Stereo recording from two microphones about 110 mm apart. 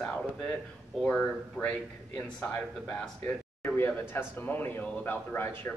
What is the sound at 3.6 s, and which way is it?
Speech, 20° left (ahead or behind).